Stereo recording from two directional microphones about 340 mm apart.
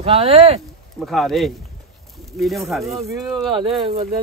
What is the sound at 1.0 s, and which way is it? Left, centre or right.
Speech, centre.